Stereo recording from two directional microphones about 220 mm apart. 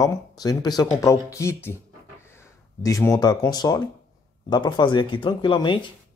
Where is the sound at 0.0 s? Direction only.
15° left (ahead or behind).